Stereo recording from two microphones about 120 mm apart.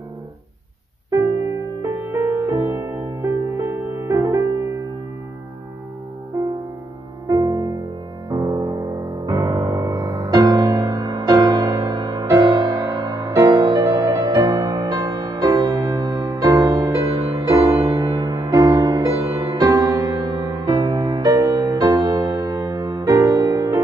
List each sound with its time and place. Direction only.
1.1 s music: 25° right (ahead or behind)
7.2 s music: 30° right (ahead or behind)